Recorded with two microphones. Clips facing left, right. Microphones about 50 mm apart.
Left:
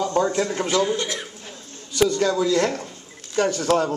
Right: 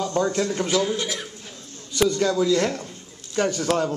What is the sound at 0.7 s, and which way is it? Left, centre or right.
A man's voice, centre.